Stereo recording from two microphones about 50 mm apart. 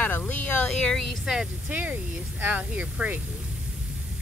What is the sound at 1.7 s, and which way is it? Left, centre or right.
Speech, right.